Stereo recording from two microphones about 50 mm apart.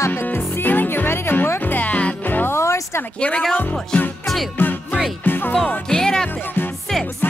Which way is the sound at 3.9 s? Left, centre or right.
Centre.